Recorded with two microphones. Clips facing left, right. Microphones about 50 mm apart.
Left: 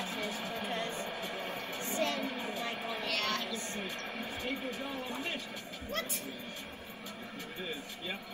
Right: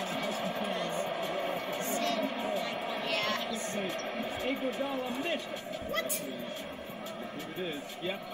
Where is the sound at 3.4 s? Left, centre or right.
Right.